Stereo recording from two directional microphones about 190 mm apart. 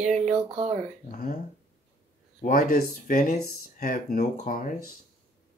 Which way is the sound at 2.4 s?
50° left (ahead or behind).